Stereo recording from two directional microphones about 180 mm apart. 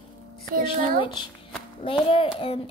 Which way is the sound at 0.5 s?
50° right (ahead or behind).